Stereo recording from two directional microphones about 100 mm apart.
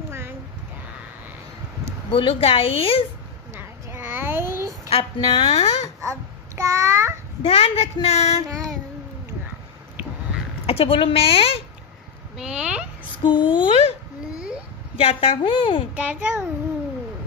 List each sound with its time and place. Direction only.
2.0 s a woman's voice: 65° left (ahead or behind)
3.5 s a sound: 20° right (ahead or behind)
4.8 s speech: 75° left (ahead or behind)
5.9 s babbling: 30° right (ahead or behind)
7.4 s speech: 85° left
10.7 s a woman's voice: 70° left (ahead or behind)
12.4 s a child's voice: 10° right (ahead or behind)
13.2 s speech: 50° left (ahead or behind)
15.0 s a woman's voice: 70° left (ahead or behind)
15.9 s a child's voice: 15° right (ahead or behind)